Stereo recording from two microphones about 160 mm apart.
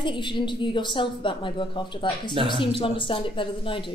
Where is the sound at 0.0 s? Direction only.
30° left (ahead or behind).